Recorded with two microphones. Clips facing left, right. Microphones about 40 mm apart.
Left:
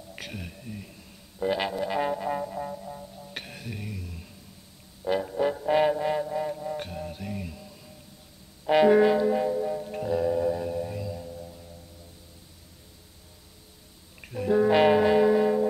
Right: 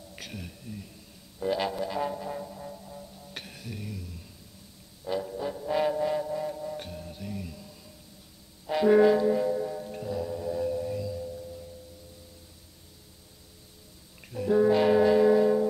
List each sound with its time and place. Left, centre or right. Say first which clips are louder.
0.1 s a sound: left 3 dB; left
1.4 s music: left 2 dB; centre
1.9 s music: left 4 dB; left
5.0 s music: left 6 dB; left
5.9 s music: left 2 dB; left
6.8 s music: left 4 dB; left
8.6 s music: left 5 dB; left
8.9 s music: even; left
9.9 s music: left 10 dB; left
10.5 s a sound: even; left
14.2 s music: even; left